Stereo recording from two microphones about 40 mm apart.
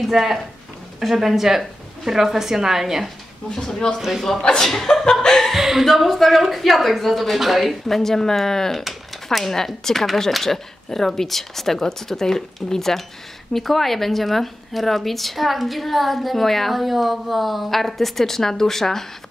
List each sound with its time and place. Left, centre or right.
0.1 s a woman's voice: centre
3.5 s speech: centre
4.6 s speech: centre
5.3 s chuckle: centre
5.6 s speech: centre
8.7 s a sound: centre
9.8 s speech: centre